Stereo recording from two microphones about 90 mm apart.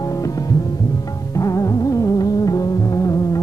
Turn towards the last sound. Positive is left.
turn(degrees=40)  # may be behind; listen again after turning